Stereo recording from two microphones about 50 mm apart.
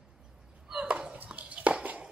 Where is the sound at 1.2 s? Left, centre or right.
Right.